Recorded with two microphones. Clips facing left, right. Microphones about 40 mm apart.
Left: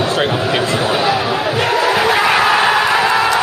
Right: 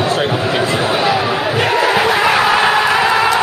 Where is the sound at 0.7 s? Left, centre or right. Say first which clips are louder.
Even; right.